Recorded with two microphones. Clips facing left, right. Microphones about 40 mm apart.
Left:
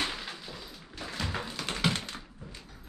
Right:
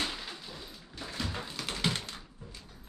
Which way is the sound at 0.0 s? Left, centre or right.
Centre.